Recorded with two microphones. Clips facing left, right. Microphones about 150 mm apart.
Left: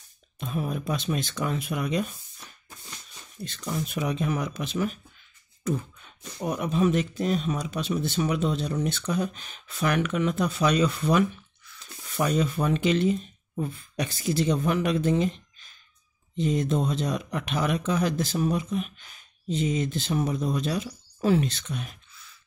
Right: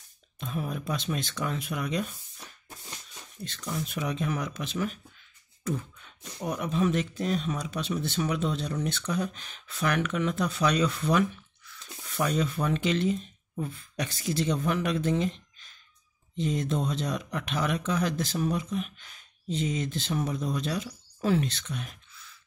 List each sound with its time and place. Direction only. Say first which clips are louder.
0.4 s speech: left 3 dB; 15° left (ahead or behind)
3.4 s speech: left 3 dB; 30° left (ahead or behind)
3.9 s speech: left 3 dB; 15° left (ahead or behind)
12.3 s speech: left 3 dB; 5° left (ahead or behind)